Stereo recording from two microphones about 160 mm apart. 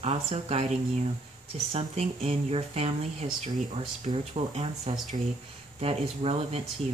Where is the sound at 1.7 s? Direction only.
40° right (ahead or behind).